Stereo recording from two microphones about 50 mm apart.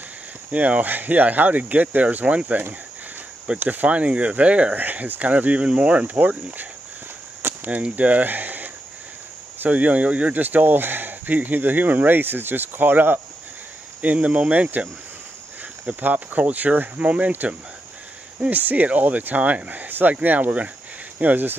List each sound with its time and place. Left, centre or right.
0.5 s speech: right
3.6 s speech: right
4.7 s speech: right
10.4 s speech: right
14.0 s speech: right